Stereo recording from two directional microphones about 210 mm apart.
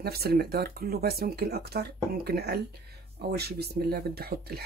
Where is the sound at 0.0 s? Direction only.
50° right (ahead or behind).